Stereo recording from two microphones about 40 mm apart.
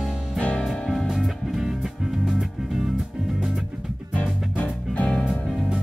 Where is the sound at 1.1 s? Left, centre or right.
Centre.